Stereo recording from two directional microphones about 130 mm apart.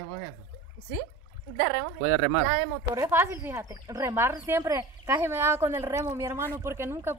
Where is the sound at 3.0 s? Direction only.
20° right (ahead or behind).